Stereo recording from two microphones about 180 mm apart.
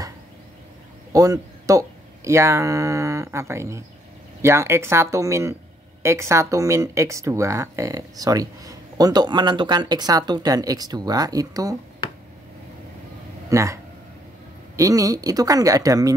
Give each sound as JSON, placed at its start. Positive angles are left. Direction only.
{"t": 1.1, "sound": "speech", "side_deg": -20}
{"t": 13.5, "sound": "speech", "side_deg": -15}
{"t": 14.8, "sound": "speech", "side_deg": -20}